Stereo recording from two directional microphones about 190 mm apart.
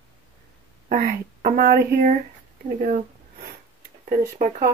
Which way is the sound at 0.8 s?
45° right (ahead or behind).